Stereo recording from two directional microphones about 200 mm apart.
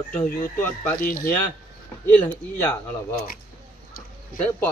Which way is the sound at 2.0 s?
10° left (ahead or behind).